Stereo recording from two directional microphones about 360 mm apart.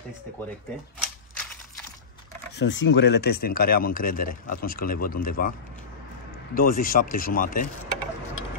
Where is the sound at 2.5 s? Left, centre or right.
Left.